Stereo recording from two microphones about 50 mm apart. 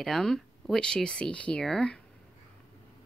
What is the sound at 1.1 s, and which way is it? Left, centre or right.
Speech, centre.